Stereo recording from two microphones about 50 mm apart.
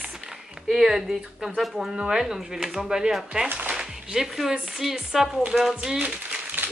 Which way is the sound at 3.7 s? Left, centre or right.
Centre.